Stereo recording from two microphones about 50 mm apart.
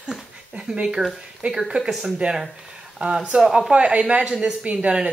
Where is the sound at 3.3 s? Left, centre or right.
Right.